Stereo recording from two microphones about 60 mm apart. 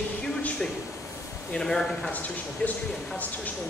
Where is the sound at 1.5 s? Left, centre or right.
Centre.